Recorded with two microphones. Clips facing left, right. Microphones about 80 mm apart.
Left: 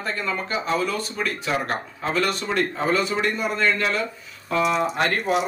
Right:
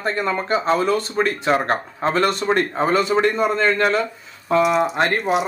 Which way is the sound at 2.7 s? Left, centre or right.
Right.